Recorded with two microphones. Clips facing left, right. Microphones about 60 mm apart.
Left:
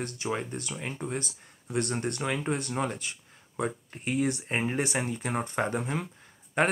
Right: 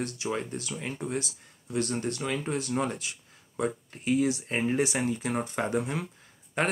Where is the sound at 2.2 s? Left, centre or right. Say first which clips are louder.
Left 1 dB; centre.